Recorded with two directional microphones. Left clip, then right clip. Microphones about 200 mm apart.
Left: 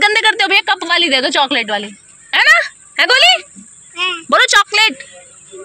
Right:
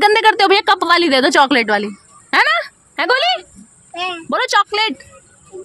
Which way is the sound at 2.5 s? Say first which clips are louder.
Left 7 dB; 20° right (ahead or behind).